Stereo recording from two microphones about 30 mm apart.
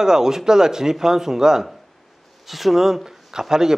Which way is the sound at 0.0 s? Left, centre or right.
Centre.